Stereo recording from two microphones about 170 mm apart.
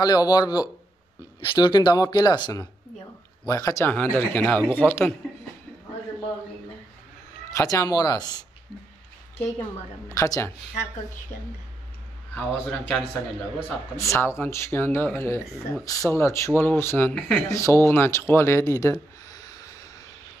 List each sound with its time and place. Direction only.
0.0 s speech: 20° left (ahead or behind)
7.5 s speech: 20° left (ahead or behind)
12.4 s speech: 5° left (ahead or behind)
17.5 s speech: 20° left (ahead or behind)